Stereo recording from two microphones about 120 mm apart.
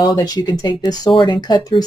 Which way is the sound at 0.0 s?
35° left (ahead or behind).